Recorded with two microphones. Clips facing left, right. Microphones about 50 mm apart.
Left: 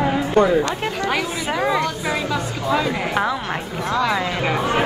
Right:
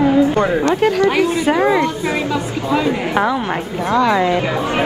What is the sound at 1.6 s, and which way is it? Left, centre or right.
A woman's voice, right.